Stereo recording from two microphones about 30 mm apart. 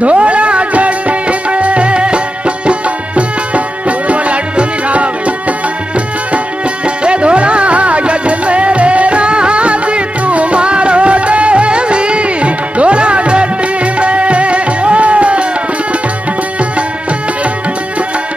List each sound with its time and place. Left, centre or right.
0.0 s music: right
7.0 s music: right